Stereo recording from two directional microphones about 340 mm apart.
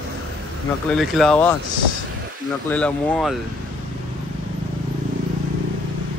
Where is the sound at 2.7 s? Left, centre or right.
Centre.